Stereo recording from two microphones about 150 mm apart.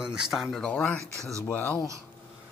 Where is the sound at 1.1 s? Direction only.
20° right (ahead or behind).